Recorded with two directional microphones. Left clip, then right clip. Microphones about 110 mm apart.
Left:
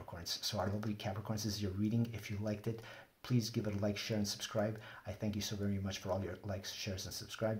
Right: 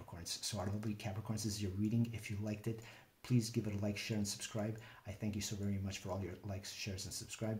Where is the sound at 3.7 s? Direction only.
10° right (ahead or behind).